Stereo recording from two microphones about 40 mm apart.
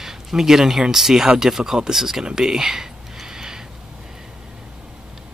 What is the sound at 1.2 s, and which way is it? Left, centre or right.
Speech, centre.